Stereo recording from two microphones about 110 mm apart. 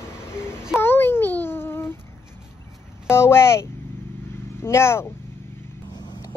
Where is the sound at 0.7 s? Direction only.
20° left (ahead or behind).